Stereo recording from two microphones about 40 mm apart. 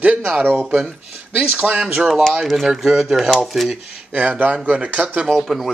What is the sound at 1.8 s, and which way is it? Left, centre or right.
Speech, right.